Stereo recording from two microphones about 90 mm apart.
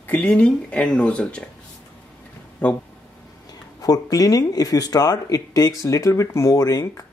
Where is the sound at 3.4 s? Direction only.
45° left (ahead or behind).